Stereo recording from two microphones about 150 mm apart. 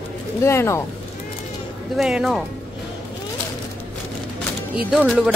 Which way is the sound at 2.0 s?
5° right (ahead or behind).